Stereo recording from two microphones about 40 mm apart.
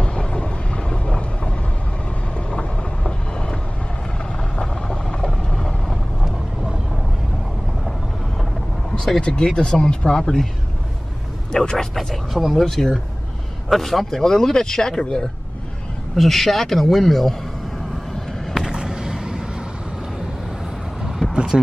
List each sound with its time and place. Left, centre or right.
0.0 s vehicle: left
4.6 s vehicle: left
5.5 s vehicle: centre
9.2 s speech: centre
11.5 s speech: centre
11.9 s speech: centre
12.4 s speech: centre
12.6 s speech: centre
16.2 s speech: centre
18.1 s vehicle: centre
18.7 s vehicle: centre